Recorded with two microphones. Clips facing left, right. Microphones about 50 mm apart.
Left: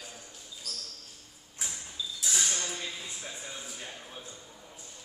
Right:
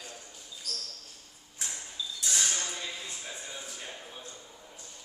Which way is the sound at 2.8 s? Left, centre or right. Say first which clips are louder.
Even; centre.